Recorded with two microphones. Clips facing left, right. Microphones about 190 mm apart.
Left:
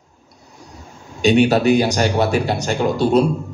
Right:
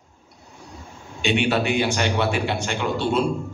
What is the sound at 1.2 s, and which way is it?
A man's voice, 40° left (ahead or behind).